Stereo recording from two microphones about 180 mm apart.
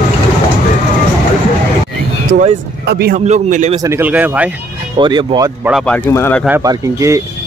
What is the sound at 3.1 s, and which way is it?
Speech, 45° right (ahead or behind).